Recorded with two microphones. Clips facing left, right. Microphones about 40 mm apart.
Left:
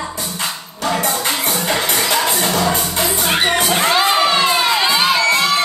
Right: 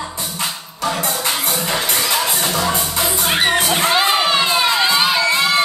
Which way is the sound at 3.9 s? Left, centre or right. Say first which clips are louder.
Left 1 dB; centre.